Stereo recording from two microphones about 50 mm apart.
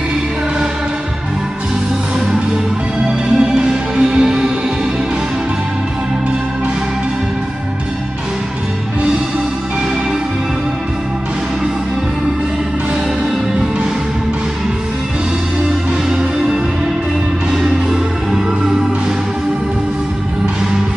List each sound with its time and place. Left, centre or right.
3.1 s music: centre
15.9 s music: centre